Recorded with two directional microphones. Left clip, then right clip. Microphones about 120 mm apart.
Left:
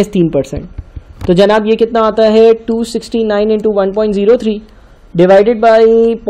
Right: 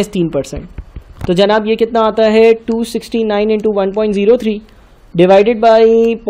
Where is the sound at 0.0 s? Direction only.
15° left (ahead or behind); by 1.9 s centre (ahead or behind).